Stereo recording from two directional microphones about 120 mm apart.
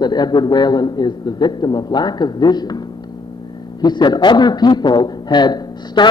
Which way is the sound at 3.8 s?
35° left (ahead or behind).